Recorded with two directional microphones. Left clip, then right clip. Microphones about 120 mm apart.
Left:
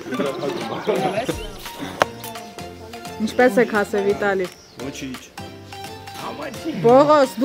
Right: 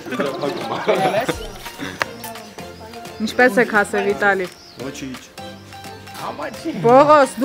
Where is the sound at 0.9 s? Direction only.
40° right (ahead or behind).